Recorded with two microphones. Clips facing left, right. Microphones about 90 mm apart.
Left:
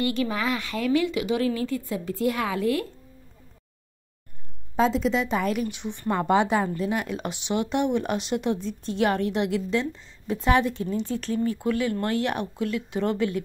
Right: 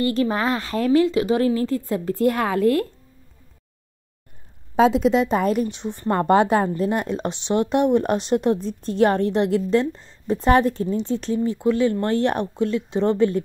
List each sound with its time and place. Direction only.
0.0 s speech: 40° right (ahead or behind)
4.7 s speech: 60° right (ahead or behind); by 13.4 s 30° right (ahead or behind)